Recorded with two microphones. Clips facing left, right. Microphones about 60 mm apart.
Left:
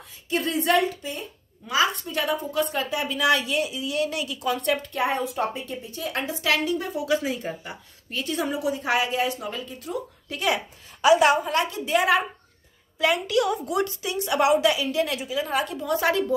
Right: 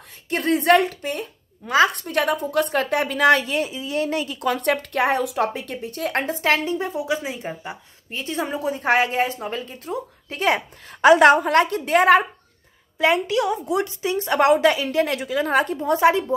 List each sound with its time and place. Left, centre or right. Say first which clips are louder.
0.3 s a woman's voice: right 5 dB; right
10.9 s a woman's voice: right 5 dB; right
13.0 s a woman's voice: right 3 dB; right